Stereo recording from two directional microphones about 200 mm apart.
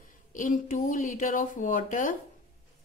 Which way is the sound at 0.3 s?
40° left (ahead or behind).